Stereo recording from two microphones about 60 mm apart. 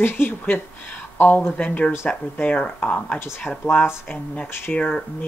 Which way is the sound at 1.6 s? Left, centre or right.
Left.